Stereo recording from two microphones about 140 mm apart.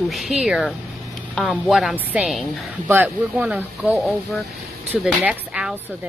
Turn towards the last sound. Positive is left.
turn(degrees=-5)  # may be behind; listen again after turning